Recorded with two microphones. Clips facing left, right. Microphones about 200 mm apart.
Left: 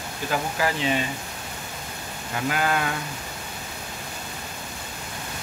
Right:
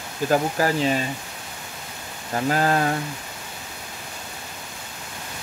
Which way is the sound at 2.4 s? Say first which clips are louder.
Right 4 dB; 35° right (ahead or behind).